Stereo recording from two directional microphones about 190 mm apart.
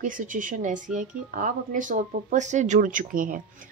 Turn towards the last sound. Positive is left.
turn(degrees=-45)  # may be behind; listen again after turning